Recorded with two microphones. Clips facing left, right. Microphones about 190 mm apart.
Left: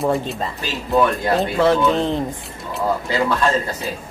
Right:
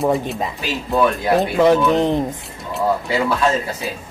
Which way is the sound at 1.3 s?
15° right (ahead or behind).